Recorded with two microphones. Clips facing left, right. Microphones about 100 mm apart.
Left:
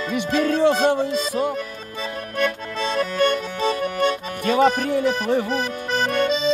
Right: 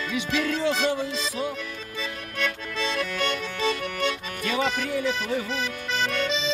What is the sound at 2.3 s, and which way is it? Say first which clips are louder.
Accordion: left 6 dB; 40° left (ahead or behind).